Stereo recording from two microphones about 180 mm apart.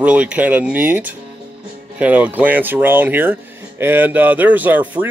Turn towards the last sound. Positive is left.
turn(degrees=-10)  # may be behind; listen again after turning